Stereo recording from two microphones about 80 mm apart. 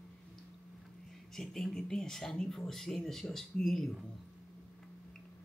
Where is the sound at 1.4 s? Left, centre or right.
Centre.